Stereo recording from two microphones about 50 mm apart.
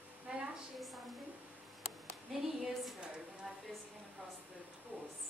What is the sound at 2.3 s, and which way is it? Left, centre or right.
Speech, centre.